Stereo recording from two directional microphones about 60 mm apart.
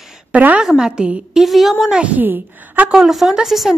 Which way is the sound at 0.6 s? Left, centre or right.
Centre.